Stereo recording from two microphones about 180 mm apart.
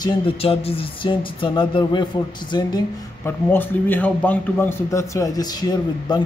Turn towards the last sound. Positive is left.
turn(degrees=20)  # may be behind; listen again after turning